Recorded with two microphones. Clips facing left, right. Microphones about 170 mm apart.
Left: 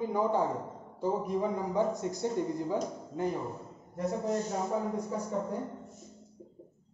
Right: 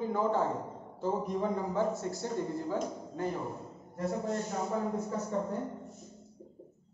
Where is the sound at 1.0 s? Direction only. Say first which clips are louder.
Left 1 dB; 10° left (ahead or behind).